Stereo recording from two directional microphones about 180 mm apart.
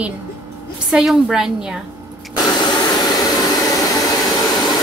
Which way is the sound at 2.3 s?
20° left (ahead or behind).